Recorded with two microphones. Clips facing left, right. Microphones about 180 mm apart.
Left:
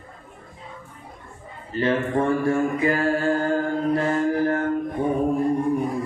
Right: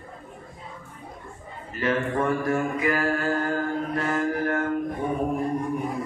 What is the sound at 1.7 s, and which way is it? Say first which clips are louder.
Mantra: left 3 dB; 30° left (ahead or behind).